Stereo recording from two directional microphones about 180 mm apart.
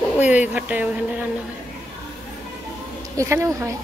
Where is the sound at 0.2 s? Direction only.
10° right (ahead or behind).